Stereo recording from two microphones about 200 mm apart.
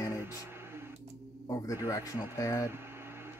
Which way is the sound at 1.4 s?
15° left (ahead or behind).